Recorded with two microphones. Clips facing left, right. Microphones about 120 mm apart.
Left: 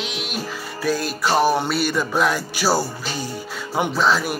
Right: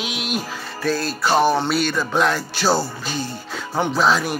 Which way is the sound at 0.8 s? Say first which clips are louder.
Even; 15° left (ahead or behind).